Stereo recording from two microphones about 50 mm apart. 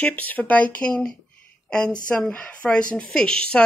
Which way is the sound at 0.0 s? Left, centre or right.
Left.